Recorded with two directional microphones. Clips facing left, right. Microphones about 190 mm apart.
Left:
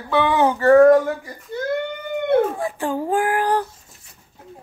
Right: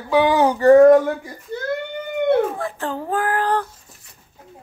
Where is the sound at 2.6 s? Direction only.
15° left (ahead or behind).